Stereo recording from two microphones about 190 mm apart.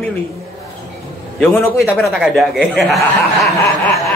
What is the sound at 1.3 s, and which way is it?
A man's voice, centre (ahead or behind).